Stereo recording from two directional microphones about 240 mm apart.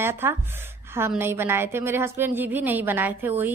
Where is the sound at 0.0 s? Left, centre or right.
Centre.